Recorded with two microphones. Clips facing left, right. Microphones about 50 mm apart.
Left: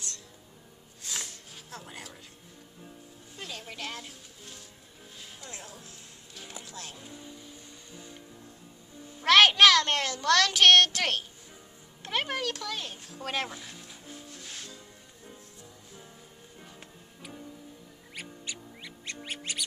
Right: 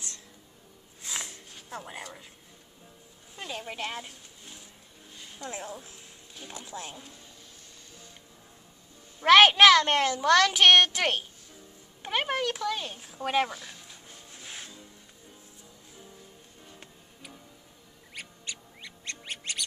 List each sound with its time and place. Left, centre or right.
1.0 s music: centre
1.7 s a child's voice: centre
3.3 s a child's voice: centre
7.0 s speech: centre
9.2 s a child's voice: centre
13.5 s music: centre
14.3 s music: centre
16.7 s tick-tock: centre
18.1 s music: centre